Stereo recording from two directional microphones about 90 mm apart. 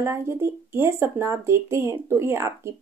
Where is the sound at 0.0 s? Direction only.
30° right (ahead or behind).